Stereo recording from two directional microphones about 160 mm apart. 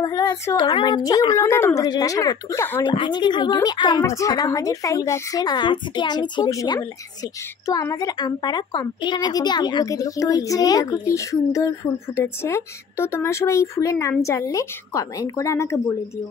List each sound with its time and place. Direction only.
0.0 s a woman's voice: 25° left (ahead or behind)
2.8 s a woman's voice: 30° left (ahead or behind)